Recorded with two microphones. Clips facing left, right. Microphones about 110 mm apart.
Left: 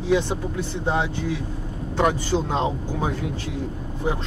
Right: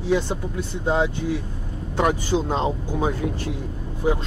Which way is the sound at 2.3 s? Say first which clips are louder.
Right 1 dB; 10° right (ahead or behind).